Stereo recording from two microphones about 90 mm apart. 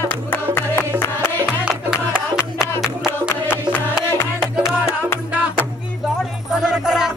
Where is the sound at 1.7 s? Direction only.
10° right (ahead or behind).